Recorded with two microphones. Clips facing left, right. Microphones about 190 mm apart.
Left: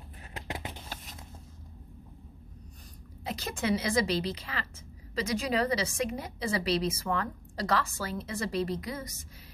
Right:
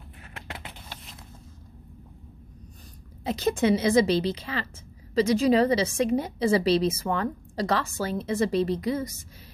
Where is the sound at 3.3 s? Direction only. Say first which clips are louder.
Right 8 dB; 25° right (ahead or behind).